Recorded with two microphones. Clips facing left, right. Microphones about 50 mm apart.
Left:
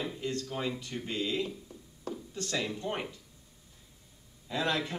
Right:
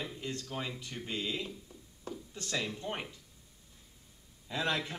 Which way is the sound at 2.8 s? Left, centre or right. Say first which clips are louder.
Left 4 dB; centre.